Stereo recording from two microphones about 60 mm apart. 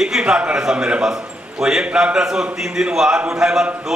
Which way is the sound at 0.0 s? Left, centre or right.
Centre.